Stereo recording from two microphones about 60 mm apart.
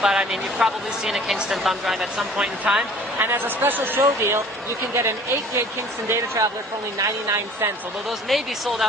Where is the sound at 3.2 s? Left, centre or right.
Right.